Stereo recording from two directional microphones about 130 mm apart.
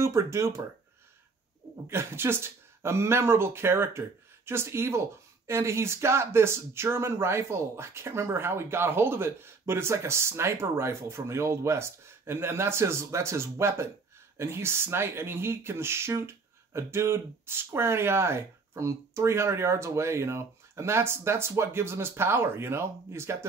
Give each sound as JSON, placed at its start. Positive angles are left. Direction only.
{"t": 0.0, "sound": "speech", "side_deg": -20}
{"t": 1.9, "sound": "speech", "side_deg": -20}